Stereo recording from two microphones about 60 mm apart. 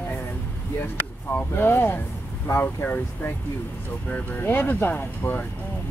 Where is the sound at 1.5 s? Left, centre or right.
Left.